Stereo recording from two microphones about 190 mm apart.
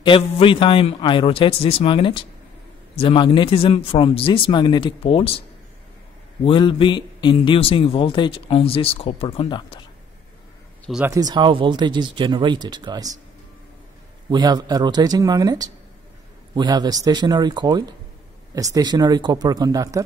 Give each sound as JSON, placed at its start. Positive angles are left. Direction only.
{"t": 0.0, "sound": "a man's voice", "side_deg": 25}
{"t": 6.4, "sound": "a man's voice", "side_deg": 25}
{"t": 11.1, "sound": "speech", "side_deg": -20}
{"t": 14.3, "sound": "speech", "side_deg": -20}